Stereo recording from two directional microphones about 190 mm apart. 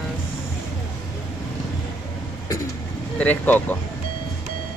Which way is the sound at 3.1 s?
10° left (ahead or behind).